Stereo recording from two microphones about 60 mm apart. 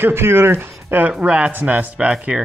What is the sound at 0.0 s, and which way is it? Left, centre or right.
Speech, right.